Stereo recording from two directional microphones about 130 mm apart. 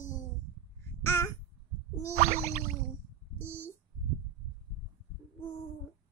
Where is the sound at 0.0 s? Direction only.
80° left.